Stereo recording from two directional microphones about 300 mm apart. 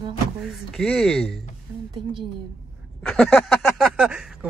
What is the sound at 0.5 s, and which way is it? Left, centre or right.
Speech, centre.